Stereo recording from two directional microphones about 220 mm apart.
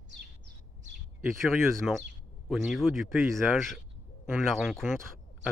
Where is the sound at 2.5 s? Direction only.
Centre (ahead or behind).